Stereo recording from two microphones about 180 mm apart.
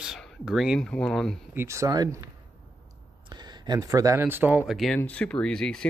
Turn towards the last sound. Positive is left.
turn(degrees=5)  # may be behind; listen again after turning